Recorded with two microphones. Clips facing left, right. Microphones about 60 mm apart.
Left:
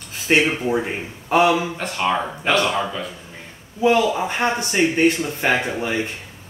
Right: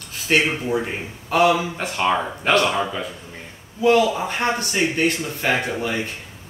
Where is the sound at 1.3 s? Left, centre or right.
Left.